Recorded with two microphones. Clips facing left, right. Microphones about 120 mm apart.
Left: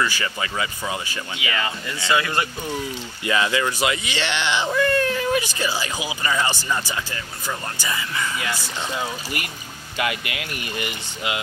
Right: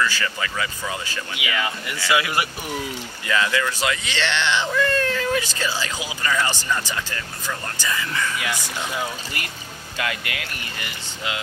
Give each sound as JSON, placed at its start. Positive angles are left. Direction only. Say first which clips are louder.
{"t": 0.0, "sound": "speech", "louder": "even", "side_deg": 20}
{"t": 1.4, "sound": "speech", "louder": "even", "side_deg": -10}
{"t": 3.3, "sound": "speech", "louder": "left 1 dB", "side_deg": 20}